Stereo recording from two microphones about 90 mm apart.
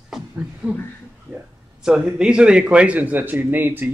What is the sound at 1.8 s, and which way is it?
Speech, 10° right (ahead or behind).